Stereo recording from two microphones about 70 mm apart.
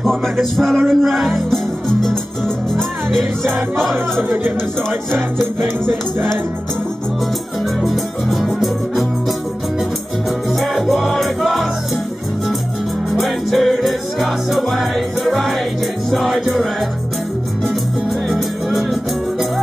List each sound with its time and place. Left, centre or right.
0.0 s music: centre
4.2 s speech: right
5.6 s music: right
7.8 s music: centre
10.6 s music: centre
13.2 s music: centre
18.3 s music: centre